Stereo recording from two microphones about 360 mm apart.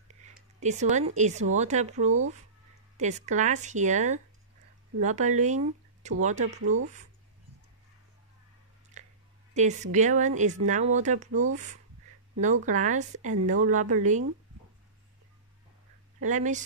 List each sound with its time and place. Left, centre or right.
0.1 s a sound: centre
1.6 s speech: centre
6.6 s speech: right
9.0 s a sound: centre
9.5 s speech: centre
16.2 s speech: right